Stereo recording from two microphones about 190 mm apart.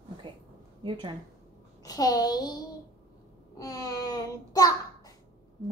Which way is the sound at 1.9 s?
20° left (ahead or behind).